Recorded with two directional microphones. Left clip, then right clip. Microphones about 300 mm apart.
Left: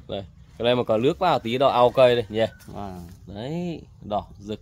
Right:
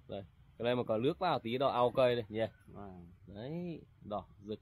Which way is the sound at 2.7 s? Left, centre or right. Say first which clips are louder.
Left 15 dB; left.